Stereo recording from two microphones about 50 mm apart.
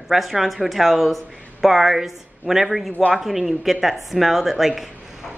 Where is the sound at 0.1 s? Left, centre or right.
Centre.